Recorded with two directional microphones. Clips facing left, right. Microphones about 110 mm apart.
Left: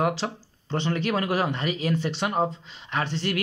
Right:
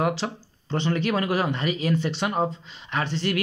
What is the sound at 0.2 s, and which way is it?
Speech, 30° left (ahead or behind).